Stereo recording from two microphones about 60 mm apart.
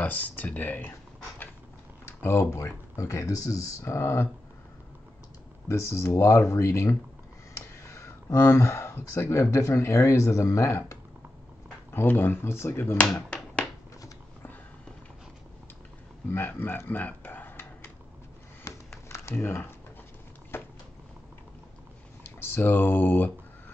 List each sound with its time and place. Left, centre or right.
0.0 s speech: left
2.0 s speech: left
2.5 s speech: left
5.7 s speech: left
7.5 s a sound: left
8.5 s speech: left
11.9 s speech: left
16.3 s a sound: left
18.6 s a sound: left
19.3 s speech: left
20.5 s a sound: left
22.2 s speech: left